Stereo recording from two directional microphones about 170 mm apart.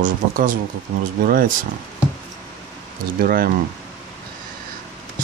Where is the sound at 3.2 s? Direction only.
60° right (ahead or behind).